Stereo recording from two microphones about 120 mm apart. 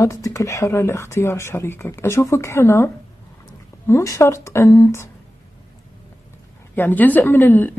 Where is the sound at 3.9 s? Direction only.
25° left (ahead or behind).